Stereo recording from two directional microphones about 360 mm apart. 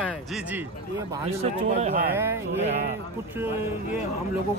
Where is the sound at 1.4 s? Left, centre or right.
Centre.